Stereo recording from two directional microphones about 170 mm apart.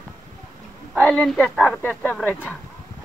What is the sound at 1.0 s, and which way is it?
Speech, 5° left (ahead or behind).